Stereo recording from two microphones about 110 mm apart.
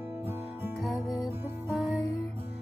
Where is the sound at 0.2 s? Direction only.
20° right (ahead or behind).